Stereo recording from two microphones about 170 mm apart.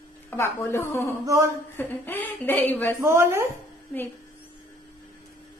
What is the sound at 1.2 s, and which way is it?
Speech, 15° right (ahead or behind).